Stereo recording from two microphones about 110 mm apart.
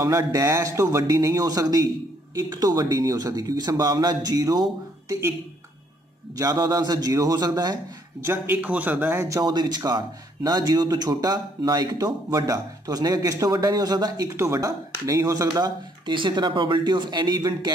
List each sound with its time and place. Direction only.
0.0 s a man's voice: 30° right (ahead or behind)
6.3 s a man's voice: 35° right (ahead or behind)
8.2 s speech: 20° right (ahead or behind)
9.2 s a man's voice: 35° right (ahead or behind)